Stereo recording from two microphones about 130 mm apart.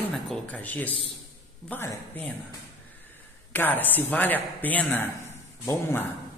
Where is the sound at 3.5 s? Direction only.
15° left (ahead or behind).